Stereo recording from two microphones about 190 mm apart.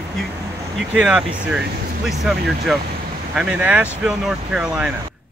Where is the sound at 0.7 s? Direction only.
5° right (ahead or behind).